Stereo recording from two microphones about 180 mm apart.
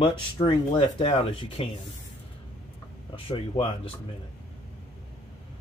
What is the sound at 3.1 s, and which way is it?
Speech, 30° left (ahead or behind).